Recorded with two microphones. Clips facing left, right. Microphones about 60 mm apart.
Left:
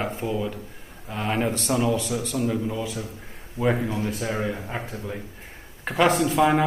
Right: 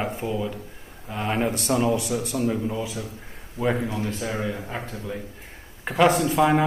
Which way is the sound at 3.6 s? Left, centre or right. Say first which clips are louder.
Left 1 dB; centre.